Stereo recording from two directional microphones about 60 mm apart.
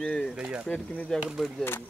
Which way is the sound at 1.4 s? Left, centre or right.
Centre.